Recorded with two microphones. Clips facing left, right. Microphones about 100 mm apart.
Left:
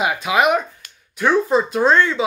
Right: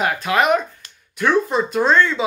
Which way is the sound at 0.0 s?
10° left (ahead or behind).